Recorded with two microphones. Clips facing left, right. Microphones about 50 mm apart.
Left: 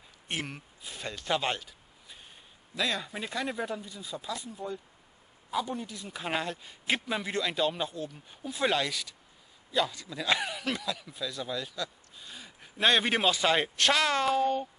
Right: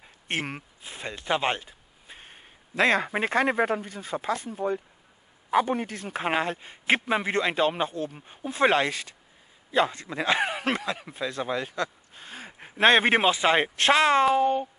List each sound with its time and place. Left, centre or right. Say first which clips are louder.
0.3 s a man's voice: right 5 dB; right
6.2 s a man's voice: right 6 dB; right